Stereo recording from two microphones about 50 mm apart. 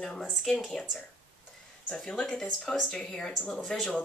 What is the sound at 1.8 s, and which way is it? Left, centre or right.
Speech, centre.